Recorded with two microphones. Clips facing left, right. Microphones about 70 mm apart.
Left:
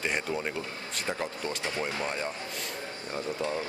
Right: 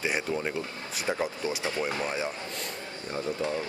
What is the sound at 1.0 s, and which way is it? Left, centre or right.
A man's voice, centre.